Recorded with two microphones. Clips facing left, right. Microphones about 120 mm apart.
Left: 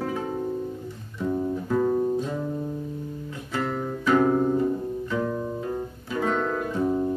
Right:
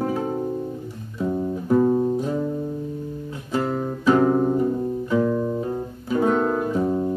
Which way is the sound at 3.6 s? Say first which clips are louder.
Right 5 dB; 30° right (ahead or behind).